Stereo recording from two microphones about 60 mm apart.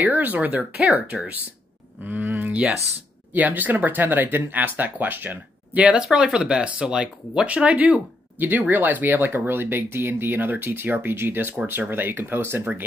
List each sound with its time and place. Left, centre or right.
0.0 s speech: right
2.0 s speech: right
5.9 s speech: centre; by 12.6 s right